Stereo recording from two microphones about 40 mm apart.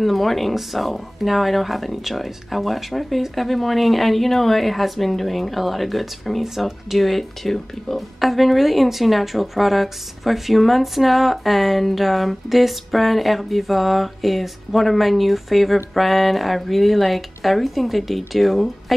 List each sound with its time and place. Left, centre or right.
0.0 s speech: centre